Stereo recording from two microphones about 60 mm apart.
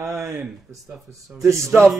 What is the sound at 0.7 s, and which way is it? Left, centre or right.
Speech, centre.